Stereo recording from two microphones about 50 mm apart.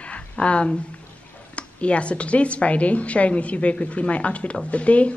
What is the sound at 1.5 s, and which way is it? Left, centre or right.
A woman's voice, left.